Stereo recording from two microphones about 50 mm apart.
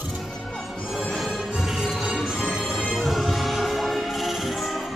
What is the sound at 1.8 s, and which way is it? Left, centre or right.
Music, centre.